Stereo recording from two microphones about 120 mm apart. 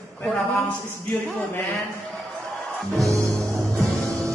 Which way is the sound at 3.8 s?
25° right (ahead or behind).